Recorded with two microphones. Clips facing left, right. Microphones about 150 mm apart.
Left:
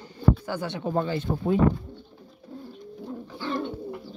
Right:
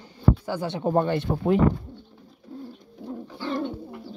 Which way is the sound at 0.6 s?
35° right (ahead or behind).